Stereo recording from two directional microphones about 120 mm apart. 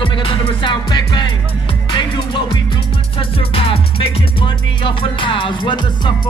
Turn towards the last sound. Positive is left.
turn(degrees=40)  # may be behind; listen again after turning